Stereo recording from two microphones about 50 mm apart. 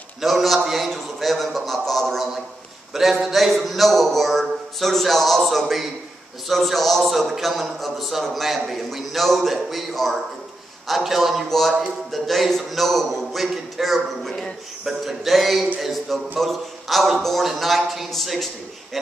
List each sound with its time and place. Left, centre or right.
0.2 s a man's voice: centre